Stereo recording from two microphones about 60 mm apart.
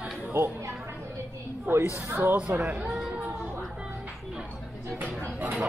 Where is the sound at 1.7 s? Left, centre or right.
Right.